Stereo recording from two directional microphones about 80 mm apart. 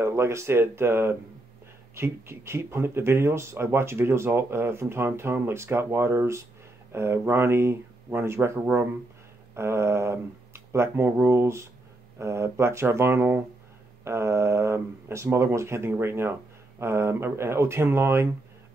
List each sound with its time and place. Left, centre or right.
0.0 s speech: right
9.6 s speech: right